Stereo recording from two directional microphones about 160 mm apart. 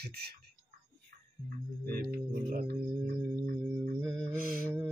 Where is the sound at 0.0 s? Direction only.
80° right.